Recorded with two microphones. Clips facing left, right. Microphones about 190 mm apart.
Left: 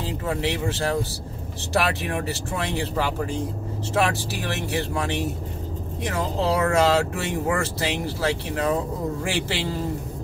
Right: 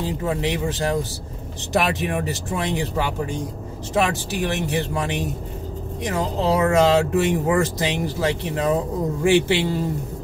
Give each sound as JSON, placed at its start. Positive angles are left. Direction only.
{"t": 0.0, "sound": "speech", "side_deg": -15}